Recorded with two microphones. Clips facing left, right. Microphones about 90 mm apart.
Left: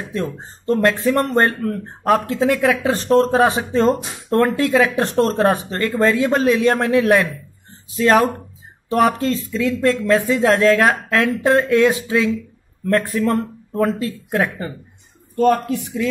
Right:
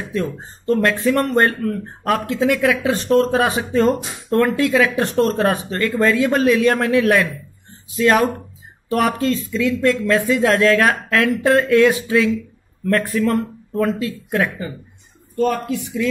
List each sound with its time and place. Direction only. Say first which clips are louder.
0.1 s speech: right 2 dB; 30° left (ahead or behind)
15.3 s speech: left 4 dB; 50° left (ahead or behind)